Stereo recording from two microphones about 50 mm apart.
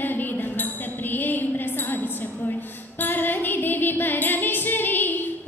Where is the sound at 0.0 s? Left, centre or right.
Left.